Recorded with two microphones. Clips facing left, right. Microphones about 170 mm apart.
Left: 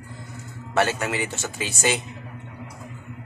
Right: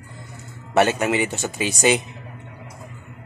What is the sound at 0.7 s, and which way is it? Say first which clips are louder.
Speech: right 5 dB; 20° right (ahead or behind).